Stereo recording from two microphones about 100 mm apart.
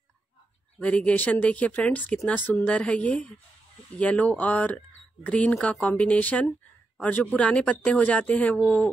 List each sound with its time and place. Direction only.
0.7 s speech: 10° left (ahead or behind)